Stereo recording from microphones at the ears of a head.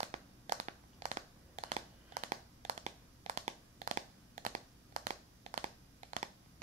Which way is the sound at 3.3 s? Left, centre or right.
Right.